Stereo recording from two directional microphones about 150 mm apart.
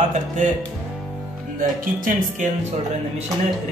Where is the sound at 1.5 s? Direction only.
65° right (ahead or behind).